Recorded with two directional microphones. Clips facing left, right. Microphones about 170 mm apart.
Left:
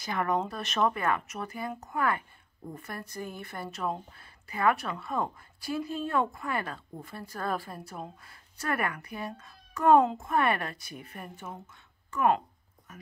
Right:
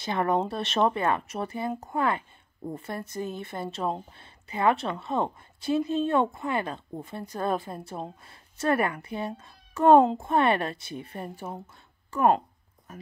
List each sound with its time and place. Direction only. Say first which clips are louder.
0.0 s speech: right 4 dB; 30° right (ahead or behind)